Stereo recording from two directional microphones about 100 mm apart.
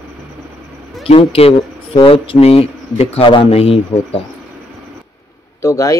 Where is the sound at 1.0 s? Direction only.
80° left.